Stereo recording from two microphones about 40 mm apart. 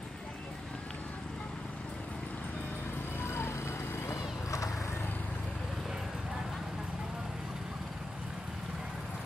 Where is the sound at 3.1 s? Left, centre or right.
Left.